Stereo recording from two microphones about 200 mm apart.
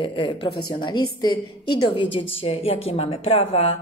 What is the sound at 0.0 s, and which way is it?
A woman's voice, 25° left (ahead or behind).